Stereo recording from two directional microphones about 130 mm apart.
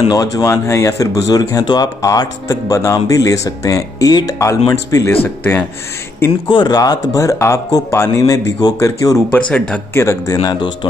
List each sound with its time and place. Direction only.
0.1 s speech: 25° left (ahead or behind)
6.5 s speech: 35° left (ahead or behind)